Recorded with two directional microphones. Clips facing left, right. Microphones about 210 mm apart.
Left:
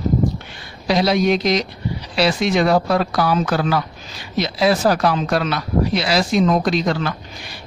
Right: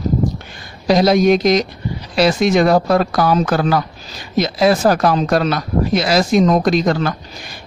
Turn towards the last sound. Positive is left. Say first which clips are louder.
# right 4 dB
turn(degrees=-45)  # may be behind; listen again after turning